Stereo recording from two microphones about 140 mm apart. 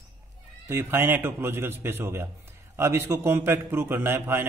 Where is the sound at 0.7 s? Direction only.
15° right (ahead or behind).